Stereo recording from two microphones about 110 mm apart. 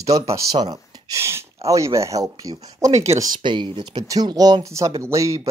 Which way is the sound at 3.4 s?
45° right (ahead or behind).